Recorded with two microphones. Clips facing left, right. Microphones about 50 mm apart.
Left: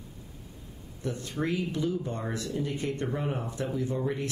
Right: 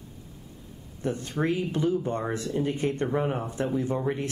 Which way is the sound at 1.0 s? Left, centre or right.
Right.